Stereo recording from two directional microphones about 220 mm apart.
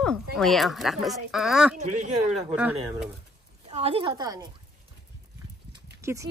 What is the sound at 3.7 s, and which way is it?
Speech, 25° right (ahead or behind).